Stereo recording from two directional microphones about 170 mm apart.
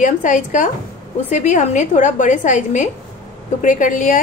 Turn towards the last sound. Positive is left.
turn(degrees=50)  # may be behind; listen again after turning